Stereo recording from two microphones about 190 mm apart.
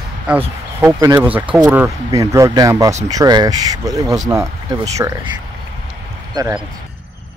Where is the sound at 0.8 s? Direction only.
15° right (ahead or behind).